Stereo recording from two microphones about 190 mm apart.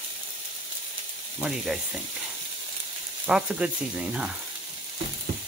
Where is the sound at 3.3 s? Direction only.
5° right (ahead or behind).